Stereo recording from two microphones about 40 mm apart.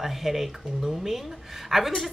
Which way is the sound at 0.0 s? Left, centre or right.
Centre.